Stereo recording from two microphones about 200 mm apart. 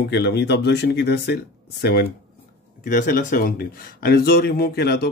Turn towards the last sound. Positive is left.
turn(degrees=55)  # may be behind; listen again after turning